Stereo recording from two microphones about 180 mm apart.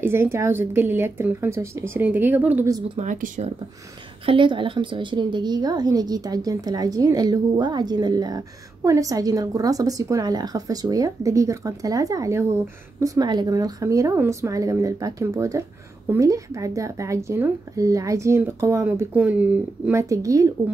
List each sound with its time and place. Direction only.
0.0 s speech: 10° right (ahead or behind)
3.0 s speech: 45° right (ahead or behind)
4.3 s a woman's voice: 25° right (ahead or behind)